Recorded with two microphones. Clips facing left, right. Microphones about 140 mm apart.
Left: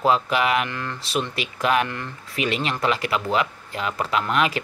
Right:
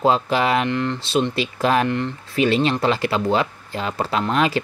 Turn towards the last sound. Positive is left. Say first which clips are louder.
# right 2 dB
turn(degrees=-30)  # may be behind; listen again after turning